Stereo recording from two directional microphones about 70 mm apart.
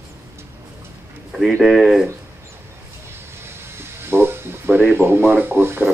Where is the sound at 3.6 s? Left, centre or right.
Right.